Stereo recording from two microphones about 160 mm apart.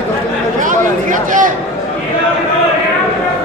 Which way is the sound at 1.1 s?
55° right (ahead or behind).